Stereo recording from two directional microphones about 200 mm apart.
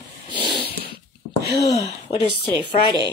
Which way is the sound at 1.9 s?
35° left (ahead or behind).